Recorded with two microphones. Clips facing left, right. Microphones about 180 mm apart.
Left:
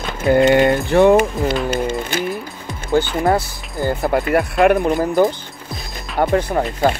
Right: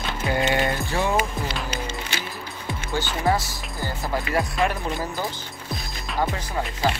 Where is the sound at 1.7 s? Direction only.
50° left (ahead or behind).